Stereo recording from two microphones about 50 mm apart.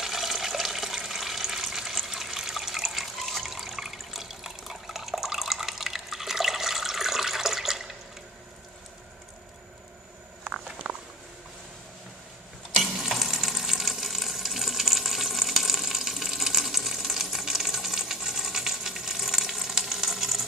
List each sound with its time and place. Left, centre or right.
0.0 s water: centre
10.8 s patter: right
12.7 s frying: centre